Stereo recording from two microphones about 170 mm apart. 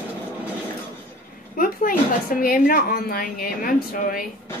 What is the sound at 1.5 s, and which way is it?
A woman's voice, 55° left (ahead or behind).